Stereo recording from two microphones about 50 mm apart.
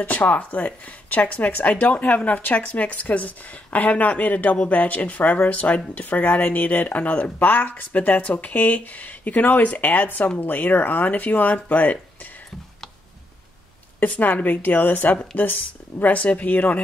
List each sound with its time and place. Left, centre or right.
0.0 s speech: left
7.3 s speech: left
14.1 s speech: left